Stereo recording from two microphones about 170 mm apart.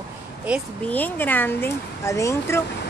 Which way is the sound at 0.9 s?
10° left (ahead or behind).